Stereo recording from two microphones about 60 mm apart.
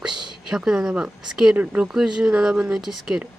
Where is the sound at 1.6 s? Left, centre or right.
Right.